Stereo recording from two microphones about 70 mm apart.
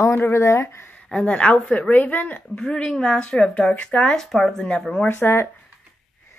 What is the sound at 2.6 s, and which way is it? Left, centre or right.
Speech, centre.